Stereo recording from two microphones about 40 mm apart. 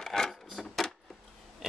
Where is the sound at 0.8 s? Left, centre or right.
Centre.